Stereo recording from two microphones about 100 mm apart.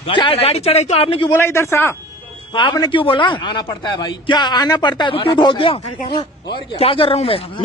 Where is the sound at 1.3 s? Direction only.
25° left (ahead or behind).